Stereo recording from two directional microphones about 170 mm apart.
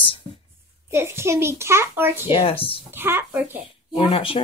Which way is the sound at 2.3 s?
30° left (ahead or behind).